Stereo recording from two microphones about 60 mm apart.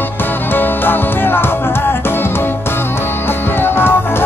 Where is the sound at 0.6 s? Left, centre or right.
Left.